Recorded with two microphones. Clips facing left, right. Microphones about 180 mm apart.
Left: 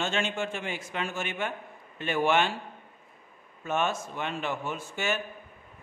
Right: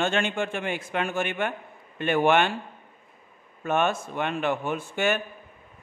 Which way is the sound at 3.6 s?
60° right (ahead or behind).